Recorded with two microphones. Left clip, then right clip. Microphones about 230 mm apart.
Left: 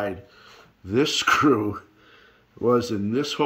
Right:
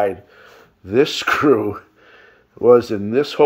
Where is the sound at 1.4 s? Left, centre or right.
Right.